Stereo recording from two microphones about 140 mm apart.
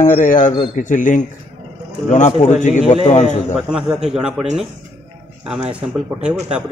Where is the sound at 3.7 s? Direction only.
5° right (ahead or behind).